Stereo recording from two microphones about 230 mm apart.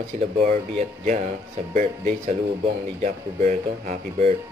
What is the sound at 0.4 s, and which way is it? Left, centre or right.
Speech, right.